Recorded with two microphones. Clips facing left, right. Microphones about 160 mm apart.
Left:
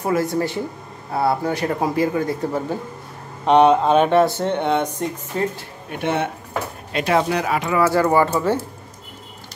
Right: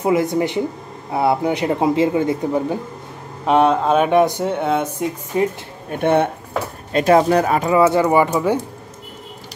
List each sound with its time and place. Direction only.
0.0 s speech: 20° right (ahead or behind)
3.4 s speech: centre (ahead or behind)
4.2 s speech: 15° right (ahead or behind)
4.5 s speech: 5° right (ahead or behind)
5.3 s speech: 15° right (ahead or behind)
5.9 s speech: 55° right (ahead or behind)
6.9 s speech: 40° right (ahead or behind)
7.8 s speech: 15° right (ahead or behind)